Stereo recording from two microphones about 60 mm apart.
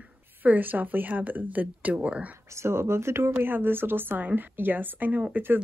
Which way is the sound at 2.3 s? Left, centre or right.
Right.